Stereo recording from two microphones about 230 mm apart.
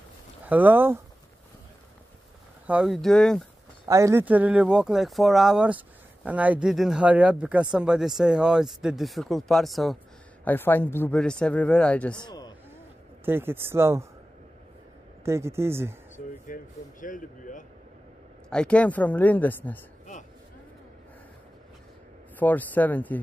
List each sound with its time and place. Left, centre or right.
0.5 s speech: centre
2.6 s speech: centre
3.8 s speech: centre
12.2 s a sound: centre
13.2 s speech: centre
15.2 s speech: centre
16.4 s speech: left
18.5 s speech: centre
22.4 s speech: centre